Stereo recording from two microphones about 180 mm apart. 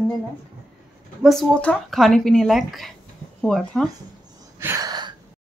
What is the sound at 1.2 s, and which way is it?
A child's voice, centre (ahead or behind).